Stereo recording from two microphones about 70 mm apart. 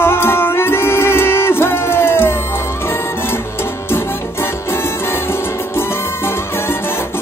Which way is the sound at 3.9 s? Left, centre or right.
Left.